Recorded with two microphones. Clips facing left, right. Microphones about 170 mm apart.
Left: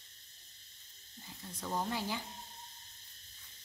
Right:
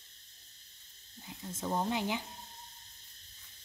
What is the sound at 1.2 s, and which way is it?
Speech, 20° right (ahead or behind).